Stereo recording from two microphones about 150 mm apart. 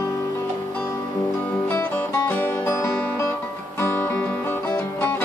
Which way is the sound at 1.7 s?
10° left (ahead or behind).